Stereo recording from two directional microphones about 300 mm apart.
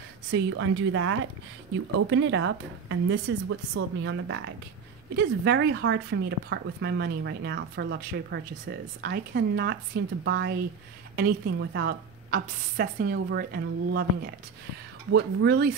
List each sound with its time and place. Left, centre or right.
0.3 s speech: right